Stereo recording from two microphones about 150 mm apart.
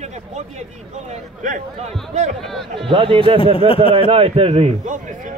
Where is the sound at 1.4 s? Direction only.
55° right (ahead or behind).